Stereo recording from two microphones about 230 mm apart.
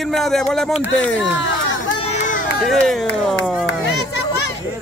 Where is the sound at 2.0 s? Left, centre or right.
Left.